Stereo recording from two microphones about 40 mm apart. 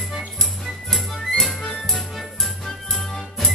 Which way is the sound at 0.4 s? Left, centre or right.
Centre.